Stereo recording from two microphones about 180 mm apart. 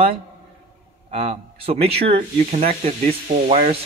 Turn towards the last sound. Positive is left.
turn(degrees=-40)  # may be behind; listen again after turning